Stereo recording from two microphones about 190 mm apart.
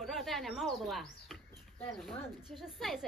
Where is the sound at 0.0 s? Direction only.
Centre (ahead or behind).